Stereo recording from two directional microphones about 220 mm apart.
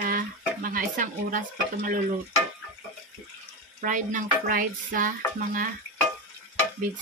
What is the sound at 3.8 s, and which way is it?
Speech, 35° right (ahead or behind).